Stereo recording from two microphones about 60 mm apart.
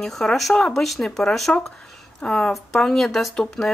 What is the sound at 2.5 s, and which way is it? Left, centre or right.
Speech, centre.